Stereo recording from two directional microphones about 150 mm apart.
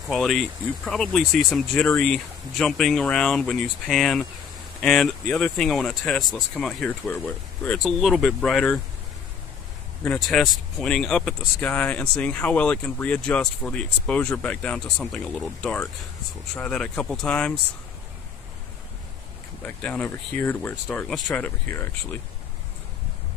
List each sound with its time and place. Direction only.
0.1 s speech: centre (ahead or behind)
10.0 s speech: 5° left (ahead or behind)
19.6 s speech: 10° left (ahead or behind)
21.1 s speech: centre (ahead or behind)
21.5 s speech: 15° left (ahead or behind)